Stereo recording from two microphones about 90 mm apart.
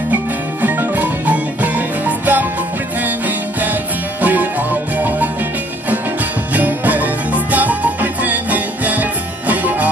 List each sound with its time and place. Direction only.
0.6 s music: 20° right (ahead or behind)
6.5 s music: 20° right (ahead or behind)